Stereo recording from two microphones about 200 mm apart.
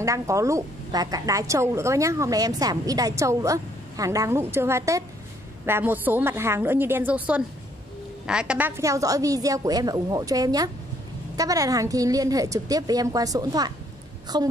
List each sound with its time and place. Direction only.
0.0 s a woman's voice: 15° right (ahead or behind)